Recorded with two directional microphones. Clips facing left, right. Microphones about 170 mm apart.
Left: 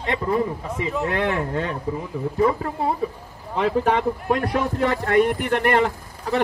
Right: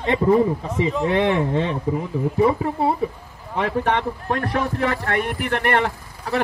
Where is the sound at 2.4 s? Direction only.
15° right (ahead or behind).